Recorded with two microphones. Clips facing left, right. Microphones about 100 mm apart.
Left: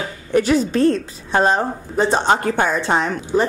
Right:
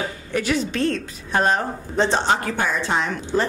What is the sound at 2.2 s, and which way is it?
Speech, 50° left (ahead or behind).